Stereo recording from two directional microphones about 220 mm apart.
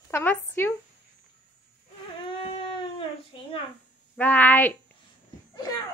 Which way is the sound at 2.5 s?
25° left (ahead or behind).